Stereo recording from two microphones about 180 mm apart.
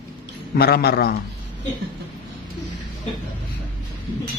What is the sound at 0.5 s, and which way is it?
Speech, 60° left (ahead or behind).